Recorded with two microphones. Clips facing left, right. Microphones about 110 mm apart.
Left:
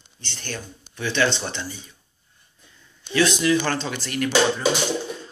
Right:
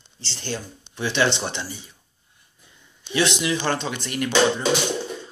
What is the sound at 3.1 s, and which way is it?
Speech, 25° right (ahead or behind).